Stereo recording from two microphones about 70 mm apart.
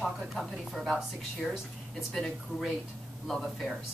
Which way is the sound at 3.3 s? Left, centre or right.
Centre.